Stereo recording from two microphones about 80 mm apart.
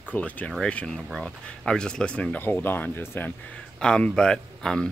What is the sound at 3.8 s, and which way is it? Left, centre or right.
Speech, centre.